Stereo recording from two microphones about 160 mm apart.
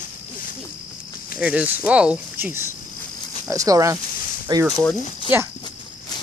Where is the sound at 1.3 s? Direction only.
10° right (ahead or behind); by 4.6 s 25° right (ahead or behind).